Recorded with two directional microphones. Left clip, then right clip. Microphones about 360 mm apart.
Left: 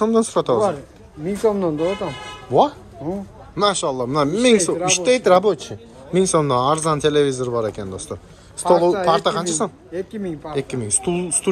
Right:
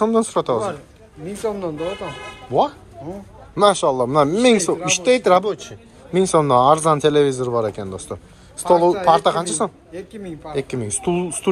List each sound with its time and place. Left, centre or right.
0.0 s speech: centre
1.2 s speech: left
3.5 s speech: centre
9.9 s speech: left
10.5 s speech: centre